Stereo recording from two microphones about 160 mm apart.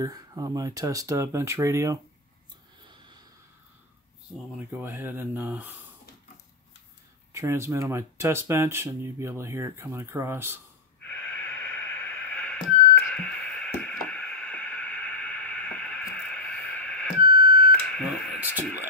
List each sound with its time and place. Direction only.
0.0 s speech: 25° right (ahead or behind)
4.6 s speech: 10° right (ahead or behind)
7.3 s speech: 15° right (ahead or behind)
11.3 s radio: 10° left (ahead or behind)
13.1 s a sound: 5° left (ahead or behind)
17.3 s a sound: 65° left (ahead or behind)
17.9 s radio: 5° left (ahead or behind)